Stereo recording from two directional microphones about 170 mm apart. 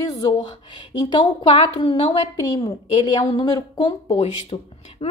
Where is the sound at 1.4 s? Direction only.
30° left (ahead or behind).